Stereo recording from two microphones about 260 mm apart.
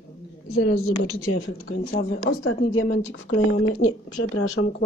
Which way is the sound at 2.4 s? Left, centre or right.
Left.